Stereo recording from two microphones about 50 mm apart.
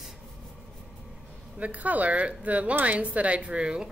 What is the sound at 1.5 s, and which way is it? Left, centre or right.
A woman's voice, right.